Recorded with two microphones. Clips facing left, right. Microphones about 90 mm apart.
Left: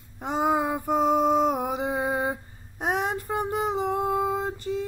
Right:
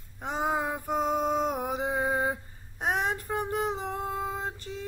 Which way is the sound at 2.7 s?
10° left (ahead or behind).